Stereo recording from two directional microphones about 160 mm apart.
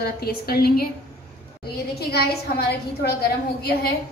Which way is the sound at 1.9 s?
80° left.